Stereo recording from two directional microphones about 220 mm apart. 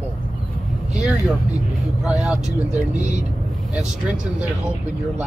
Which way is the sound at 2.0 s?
5° right (ahead or behind).